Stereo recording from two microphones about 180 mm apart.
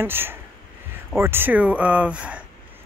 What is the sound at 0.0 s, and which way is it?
Speech, 10° right (ahead or behind).